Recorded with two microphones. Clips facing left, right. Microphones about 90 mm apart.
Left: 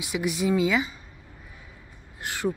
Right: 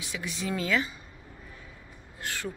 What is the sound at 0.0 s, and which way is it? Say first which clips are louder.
Speech: left 9 dB; 15° left (ahead or behind).